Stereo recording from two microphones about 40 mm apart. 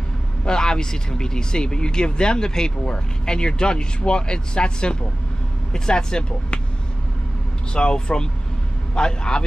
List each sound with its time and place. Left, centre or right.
0.5 s speech: centre
7.7 s speech: left